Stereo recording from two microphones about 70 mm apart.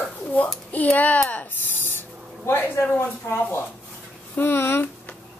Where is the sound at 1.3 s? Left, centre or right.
Left.